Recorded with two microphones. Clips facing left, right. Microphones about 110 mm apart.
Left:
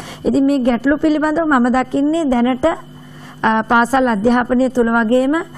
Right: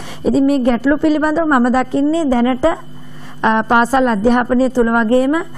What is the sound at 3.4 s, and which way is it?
A woman's voice, 15° right (ahead or behind).